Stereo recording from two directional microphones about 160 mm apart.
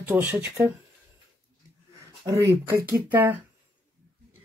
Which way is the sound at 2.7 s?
10° right (ahead or behind).